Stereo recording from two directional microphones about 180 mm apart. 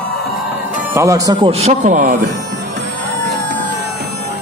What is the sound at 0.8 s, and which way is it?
Speech, 15° right (ahead or behind).